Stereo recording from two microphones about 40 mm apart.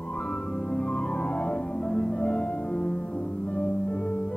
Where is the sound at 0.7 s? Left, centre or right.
Left.